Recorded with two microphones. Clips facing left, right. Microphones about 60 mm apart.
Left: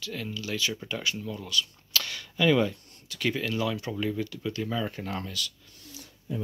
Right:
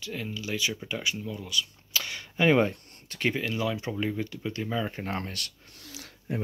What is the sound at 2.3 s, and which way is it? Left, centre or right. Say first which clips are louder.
Speech: right 1 dB; right.